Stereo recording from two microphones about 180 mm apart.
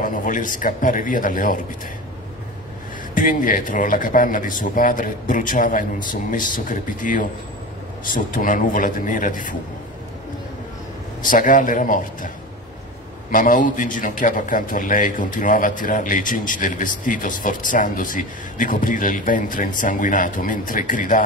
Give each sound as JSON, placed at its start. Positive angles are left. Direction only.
{"t": 0.0, "sound": "a man's voice", "side_deg": 45}
{"t": 3.2, "sound": "a man's voice", "side_deg": 50}
{"t": 11.2, "sound": "a man's voice", "side_deg": 45}
{"t": 13.3, "sound": "a man's voice", "side_deg": 50}